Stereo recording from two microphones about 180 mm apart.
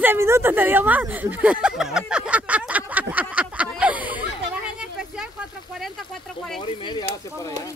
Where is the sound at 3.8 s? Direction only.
10° right (ahead or behind).